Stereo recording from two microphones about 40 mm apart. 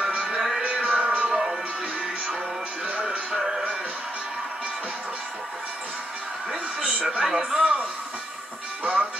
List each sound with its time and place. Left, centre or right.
0.0 s music: right
1.3 s music: centre
3.3 s music: centre
7.1 s a sound: right
8.8 s music: right